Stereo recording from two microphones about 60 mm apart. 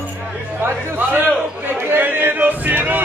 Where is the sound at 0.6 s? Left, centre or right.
Right.